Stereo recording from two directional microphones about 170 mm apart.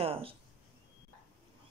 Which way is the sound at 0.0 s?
35° right (ahead or behind).